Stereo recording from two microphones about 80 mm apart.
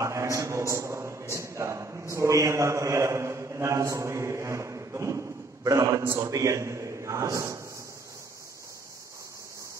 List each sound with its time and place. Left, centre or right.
0.0 s a man's voice: right